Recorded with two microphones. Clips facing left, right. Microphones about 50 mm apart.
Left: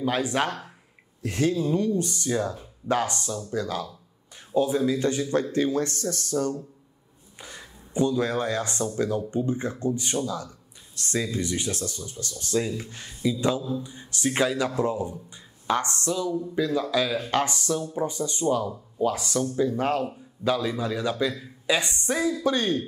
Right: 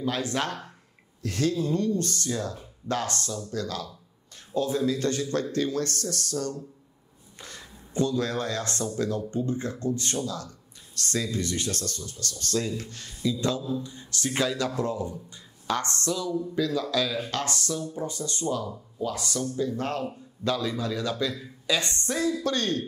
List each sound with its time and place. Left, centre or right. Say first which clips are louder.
0.0 s a man's voice: left 3 dB; centre